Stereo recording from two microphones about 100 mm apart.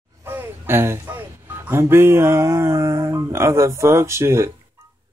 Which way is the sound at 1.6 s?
25° right (ahead or behind).